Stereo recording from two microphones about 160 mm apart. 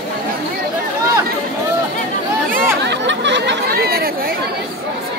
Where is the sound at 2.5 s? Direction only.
80° right.